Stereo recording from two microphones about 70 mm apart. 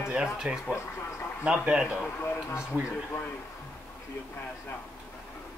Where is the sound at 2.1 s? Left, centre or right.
Left.